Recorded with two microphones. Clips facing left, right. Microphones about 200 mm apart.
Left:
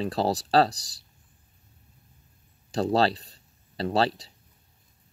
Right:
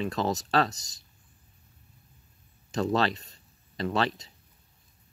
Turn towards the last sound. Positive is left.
turn(degrees=35)  # may be behind; listen again after turning